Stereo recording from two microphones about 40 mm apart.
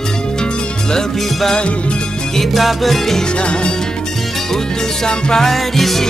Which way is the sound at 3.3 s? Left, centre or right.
Left.